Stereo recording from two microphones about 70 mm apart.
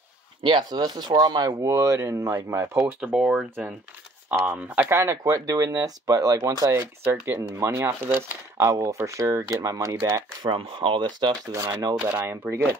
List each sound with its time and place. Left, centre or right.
0.7 s speech: right
1.6 s speech: right
3.0 s speech: centre
4.8 s speech: right
8.7 s speech: right
10.4 s speech: right
11.5 s speech: right
12.1 s speech: right